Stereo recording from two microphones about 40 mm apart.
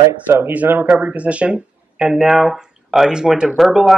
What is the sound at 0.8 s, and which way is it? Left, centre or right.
Speech, right.